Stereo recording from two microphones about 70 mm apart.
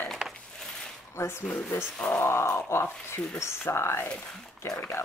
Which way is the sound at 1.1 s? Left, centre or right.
Left.